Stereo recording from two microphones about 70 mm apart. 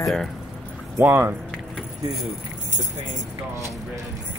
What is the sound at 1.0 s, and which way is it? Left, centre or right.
Music, right.